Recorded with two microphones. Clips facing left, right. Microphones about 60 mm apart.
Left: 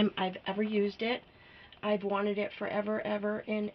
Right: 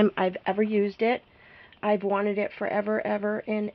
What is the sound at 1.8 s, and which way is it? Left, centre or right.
Speech, right.